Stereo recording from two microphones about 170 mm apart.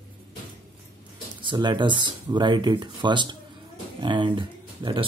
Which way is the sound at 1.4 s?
25° right (ahead or behind).